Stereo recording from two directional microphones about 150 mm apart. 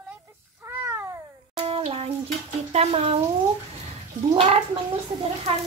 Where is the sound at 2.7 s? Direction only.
45° right (ahead or behind).